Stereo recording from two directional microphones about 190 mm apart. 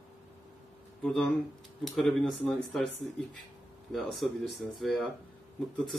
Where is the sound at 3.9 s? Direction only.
Centre (ahead or behind).